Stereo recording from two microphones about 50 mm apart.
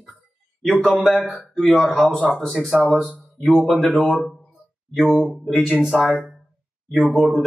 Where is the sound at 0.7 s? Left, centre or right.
Centre.